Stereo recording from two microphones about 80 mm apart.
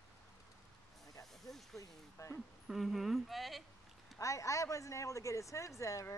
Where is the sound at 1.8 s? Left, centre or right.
Left.